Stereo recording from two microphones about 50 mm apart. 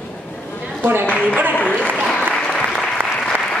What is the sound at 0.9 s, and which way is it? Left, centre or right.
Speech, right.